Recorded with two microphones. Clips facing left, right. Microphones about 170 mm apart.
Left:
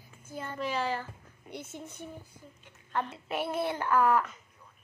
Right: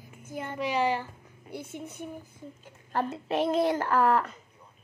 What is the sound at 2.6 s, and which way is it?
A woman's voice, 40° right (ahead or behind).